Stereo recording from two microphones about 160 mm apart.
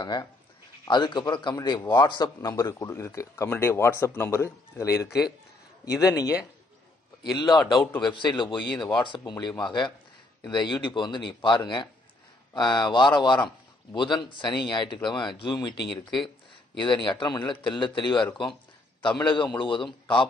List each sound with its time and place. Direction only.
0.0 s a man's voice: 30° left (ahead or behind)